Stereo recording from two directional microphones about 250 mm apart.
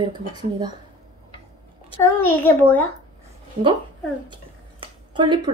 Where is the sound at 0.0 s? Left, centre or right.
Centre.